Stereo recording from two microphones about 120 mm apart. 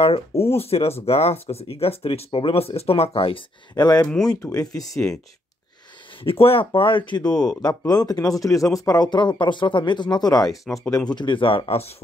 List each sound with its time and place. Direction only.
0.0 s speech: 55° left (ahead or behind)
3.7 s speech: 35° left (ahead or behind)
6.2 s speech: 50° left (ahead or behind)
7.2 s speech: 5° left (ahead or behind)
7.6 s speech: 30° left (ahead or behind)
10.5 s speech: centre (ahead or behind)
11.1 s speech: 40° left (ahead or behind)